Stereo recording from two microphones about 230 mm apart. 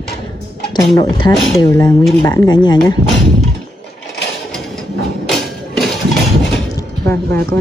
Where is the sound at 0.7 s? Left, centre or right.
Centre.